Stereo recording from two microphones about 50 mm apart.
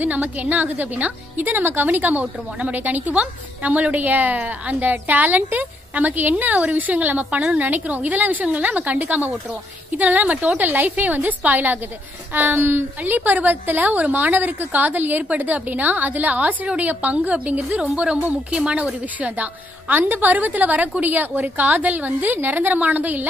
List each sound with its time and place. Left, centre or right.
0.0 s speech: right
12.4 s a woman's voice: right